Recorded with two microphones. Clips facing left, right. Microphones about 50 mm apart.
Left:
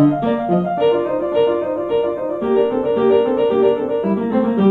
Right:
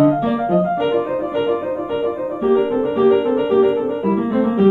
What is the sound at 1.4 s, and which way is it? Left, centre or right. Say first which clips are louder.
Music: left 4 dB; centre.